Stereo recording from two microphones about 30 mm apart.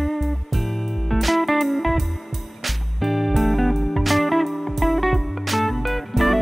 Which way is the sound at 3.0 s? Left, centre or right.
Centre.